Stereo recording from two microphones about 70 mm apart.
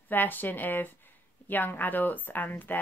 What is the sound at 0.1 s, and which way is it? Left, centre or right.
Speech, left.